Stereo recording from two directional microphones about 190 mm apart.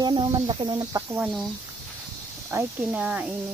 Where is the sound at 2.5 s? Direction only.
10° right (ahead or behind).